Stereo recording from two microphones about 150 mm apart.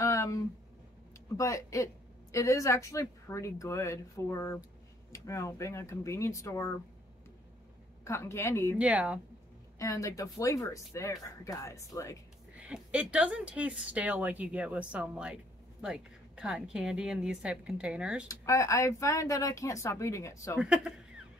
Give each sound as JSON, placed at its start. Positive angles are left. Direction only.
{"t": 0.0, "sound": "a sound", "side_deg": 20}
{"t": 1.3, "sound": "speech", "side_deg": 20}
{"t": 8.0, "sound": "speech", "side_deg": 20}
{"t": 8.7, "sound": "speech", "side_deg": -10}
{"t": 9.8, "sound": "speech", "side_deg": 20}
{"t": 12.5, "sound": "speech", "side_deg": -10}
{"t": 18.4, "sound": "speech", "side_deg": 20}
{"t": 20.5, "sound": "speech", "side_deg": -5}